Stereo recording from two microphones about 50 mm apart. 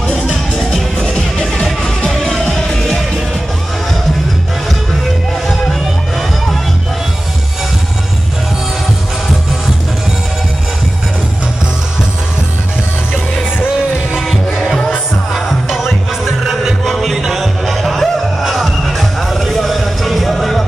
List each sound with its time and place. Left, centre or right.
0.3 s music: centre
0.9 s music: centre
5.5 s music: centre
13.1 s music: left
14.2 s music: centre